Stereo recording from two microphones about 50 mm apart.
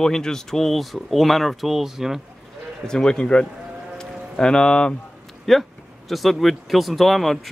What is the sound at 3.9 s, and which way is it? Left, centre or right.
Music, centre.